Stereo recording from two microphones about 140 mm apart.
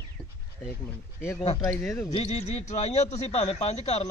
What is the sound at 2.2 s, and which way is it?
Speech, 55° left (ahead or behind).